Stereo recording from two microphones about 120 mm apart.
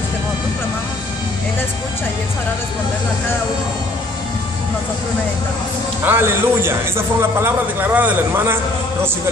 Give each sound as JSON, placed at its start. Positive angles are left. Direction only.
{"t": 6.0, "sound": "a man's voice", "side_deg": -20}